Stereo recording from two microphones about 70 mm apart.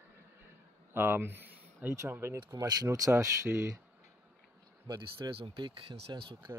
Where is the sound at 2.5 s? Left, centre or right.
Right.